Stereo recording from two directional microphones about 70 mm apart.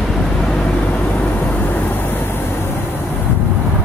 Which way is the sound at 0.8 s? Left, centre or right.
Left.